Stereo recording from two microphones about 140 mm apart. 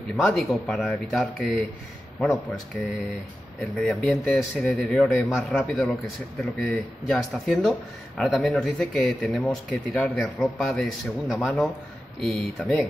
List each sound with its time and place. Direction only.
0.1 s a man's voice: centre (ahead or behind)
3.7 s a man's voice: centre (ahead or behind)
4.2 s speech: 20° left (ahead or behind)
4.6 s a man's voice: 10° left (ahead or behind)